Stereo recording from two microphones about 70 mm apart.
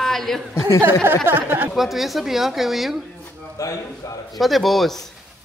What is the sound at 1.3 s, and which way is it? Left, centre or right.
Speech, right.